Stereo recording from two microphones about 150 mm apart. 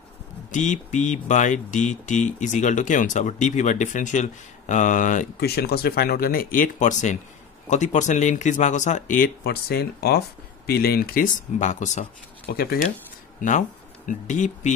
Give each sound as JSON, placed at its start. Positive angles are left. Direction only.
{"t": 0.5, "sound": "speech", "side_deg": 55}
{"t": 12.4, "sound": "speech", "side_deg": 80}
{"t": 13.4, "sound": "speech", "side_deg": 60}